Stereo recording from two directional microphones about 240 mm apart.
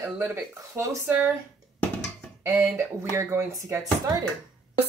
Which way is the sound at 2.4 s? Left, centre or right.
Centre.